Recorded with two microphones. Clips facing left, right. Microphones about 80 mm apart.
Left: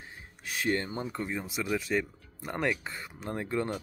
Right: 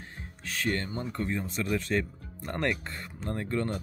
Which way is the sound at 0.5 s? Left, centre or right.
Centre.